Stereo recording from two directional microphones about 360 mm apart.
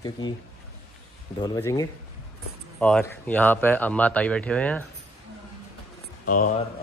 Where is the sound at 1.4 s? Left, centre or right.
Centre.